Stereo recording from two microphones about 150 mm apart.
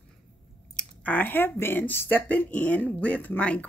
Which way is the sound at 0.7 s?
10° left (ahead or behind).